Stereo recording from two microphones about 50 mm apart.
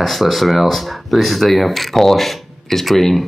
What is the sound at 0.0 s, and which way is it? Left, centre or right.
Speech, centre.